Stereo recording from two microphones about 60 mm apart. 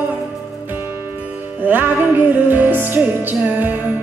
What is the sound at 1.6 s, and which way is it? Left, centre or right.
Music, right.